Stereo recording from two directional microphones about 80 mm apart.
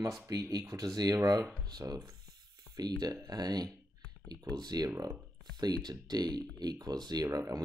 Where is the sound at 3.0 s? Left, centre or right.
Right.